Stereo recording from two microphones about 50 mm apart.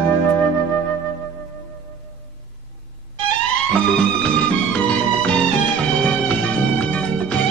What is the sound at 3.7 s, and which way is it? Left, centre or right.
Music, centre.